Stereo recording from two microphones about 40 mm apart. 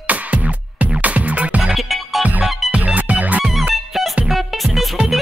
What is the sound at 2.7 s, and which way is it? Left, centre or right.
Music, right.